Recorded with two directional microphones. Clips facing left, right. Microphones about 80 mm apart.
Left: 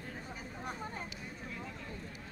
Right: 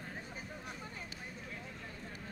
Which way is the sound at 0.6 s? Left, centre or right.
Left.